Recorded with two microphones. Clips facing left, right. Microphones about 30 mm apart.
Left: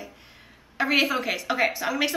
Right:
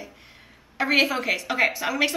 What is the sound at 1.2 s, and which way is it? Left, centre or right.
Speech, centre.